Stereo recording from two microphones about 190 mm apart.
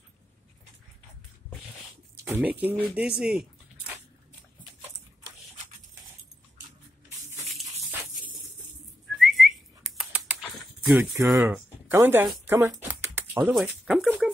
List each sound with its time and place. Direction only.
2.2 s speech: 10° right (ahead or behind)
9.2 s whistling: centre (ahead or behind)
11.2 s speech: centre (ahead or behind)
11.9 s speech: 15° right (ahead or behind)